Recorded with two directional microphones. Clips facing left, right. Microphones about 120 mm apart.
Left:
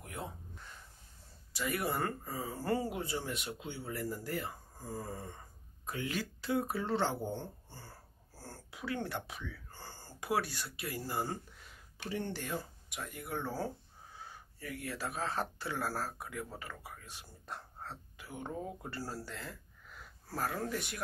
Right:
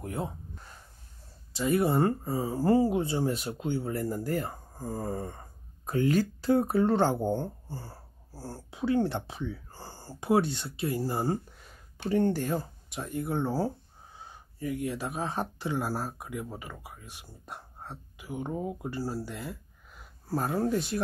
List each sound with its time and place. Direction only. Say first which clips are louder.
0.0 s speech: right 9 dB; 35° right (ahead or behind)
1.5 s speech: right 9 dB; 25° right (ahead or behind)
12.1 s speech: right 11 dB; 45° right (ahead or behind); by 21.0 s 30° right (ahead or behind)